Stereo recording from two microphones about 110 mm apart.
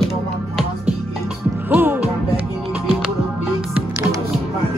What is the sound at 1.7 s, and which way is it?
Music, 15° right (ahead or behind).